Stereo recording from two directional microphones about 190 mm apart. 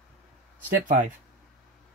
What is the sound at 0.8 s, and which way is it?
Speech, 40° right (ahead or behind).